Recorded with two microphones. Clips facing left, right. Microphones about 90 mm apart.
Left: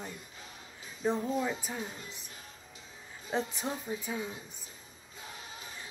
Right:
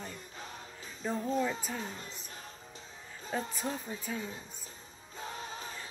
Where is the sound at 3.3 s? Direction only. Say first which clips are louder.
Left 2 dB; 15° left (ahead or behind).